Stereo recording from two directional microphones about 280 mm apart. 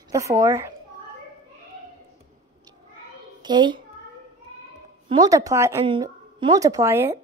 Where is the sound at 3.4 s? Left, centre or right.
Centre.